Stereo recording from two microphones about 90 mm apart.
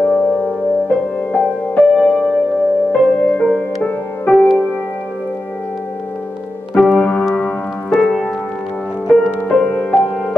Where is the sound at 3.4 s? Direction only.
15° left (ahead or behind).